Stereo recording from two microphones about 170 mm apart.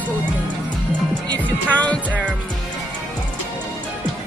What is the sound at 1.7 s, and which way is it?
Speech, 10° left (ahead or behind).